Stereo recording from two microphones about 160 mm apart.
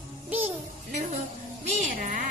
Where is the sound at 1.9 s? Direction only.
60° right (ahead or behind).